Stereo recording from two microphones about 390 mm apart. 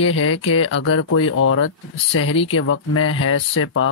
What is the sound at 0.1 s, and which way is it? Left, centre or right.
Speech, left.